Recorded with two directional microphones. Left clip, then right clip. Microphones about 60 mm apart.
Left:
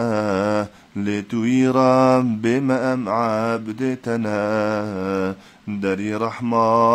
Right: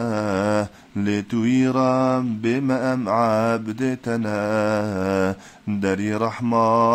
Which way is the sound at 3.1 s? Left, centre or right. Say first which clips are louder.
Right 3 dB; right.